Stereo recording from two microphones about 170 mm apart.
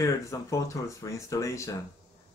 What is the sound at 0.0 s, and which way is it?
Speech, 20° left (ahead or behind).